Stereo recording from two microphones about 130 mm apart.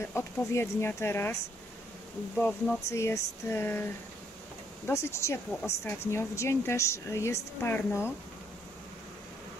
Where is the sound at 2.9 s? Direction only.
20° left (ahead or behind).